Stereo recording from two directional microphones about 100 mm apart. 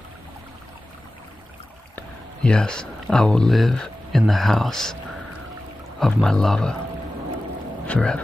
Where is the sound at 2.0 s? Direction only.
10° left (ahead or behind).